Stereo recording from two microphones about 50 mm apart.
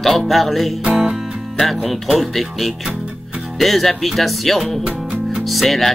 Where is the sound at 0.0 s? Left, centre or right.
Centre.